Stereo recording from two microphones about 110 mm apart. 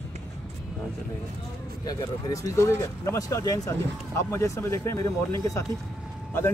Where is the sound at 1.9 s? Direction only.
35° left (ahead or behind).